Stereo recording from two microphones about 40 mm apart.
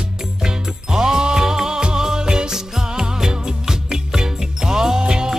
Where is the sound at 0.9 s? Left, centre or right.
Centre.